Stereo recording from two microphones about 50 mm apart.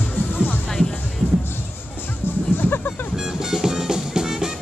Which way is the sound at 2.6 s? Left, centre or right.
Left.